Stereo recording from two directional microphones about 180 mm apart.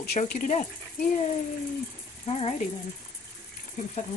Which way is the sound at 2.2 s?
30° left (ahead or behind).